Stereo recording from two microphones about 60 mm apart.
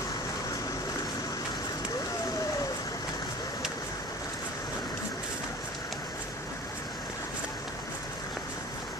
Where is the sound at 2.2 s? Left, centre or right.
Left.